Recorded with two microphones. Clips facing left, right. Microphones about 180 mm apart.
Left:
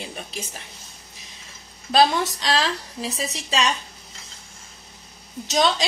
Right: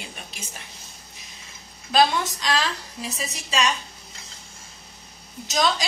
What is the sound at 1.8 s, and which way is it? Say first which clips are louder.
Speech: left 2 dB; 30° left (ahead or behind).